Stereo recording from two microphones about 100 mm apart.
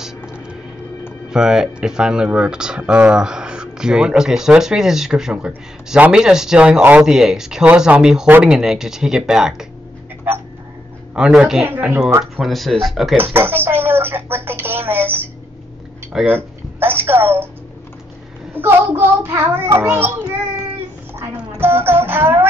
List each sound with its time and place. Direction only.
1.3 s speech: 5° right (ahead or behind)
10.3 s a sound: 20° right (ahead or behind)
11.1 s speech: 5° right (ahead or behind)
11.6 s child singing: 20° right (ahead or behind)
12.4 s speech: centre (ahead or behind)
13.2 s a sound: 20° right (ahead or behind)
16.3 s speech: 20° right (ahead or behind)
18.5 s child singing: 20° right (ahead or behind)
21.5 s music: 20° right (ahead or behind)